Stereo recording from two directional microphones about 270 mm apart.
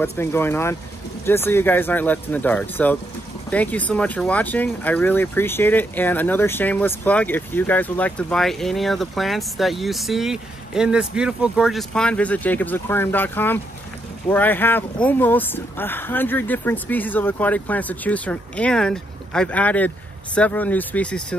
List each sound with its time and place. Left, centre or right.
0.0 s speech: centre